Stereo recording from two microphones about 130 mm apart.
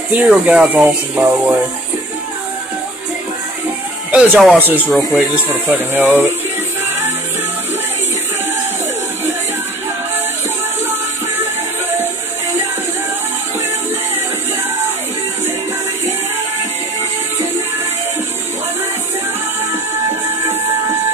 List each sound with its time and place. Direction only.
0.1 s speech: 10° right (ahead or behind)
4.1 s speech: 10° right (ahead or behind)
4.6 s speech: 15° right (ahead or behind)